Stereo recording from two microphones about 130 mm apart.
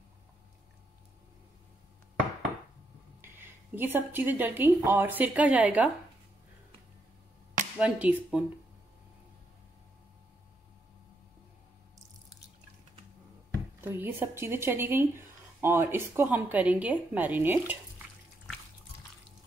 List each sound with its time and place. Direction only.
3.2 s a woman's voice: 15° right (ahead or behind)
7.8 s speech: 10° right (ahead or behind)
13.7 s speech: 15° right (ahead or behind)